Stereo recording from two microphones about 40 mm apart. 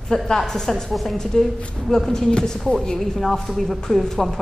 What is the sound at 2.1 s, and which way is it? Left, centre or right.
A woman's voice, centre.